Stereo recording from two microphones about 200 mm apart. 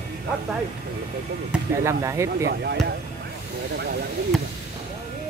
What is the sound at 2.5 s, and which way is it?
Speech, 60° right (ahead or behind).